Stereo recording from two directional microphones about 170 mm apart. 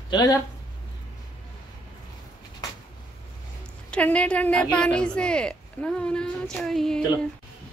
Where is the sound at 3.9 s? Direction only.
5° left (ahead or behind).